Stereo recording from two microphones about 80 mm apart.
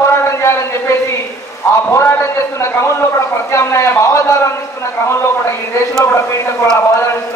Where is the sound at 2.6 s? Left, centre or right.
Left.